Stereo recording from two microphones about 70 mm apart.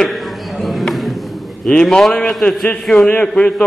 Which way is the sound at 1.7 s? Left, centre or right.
Centre.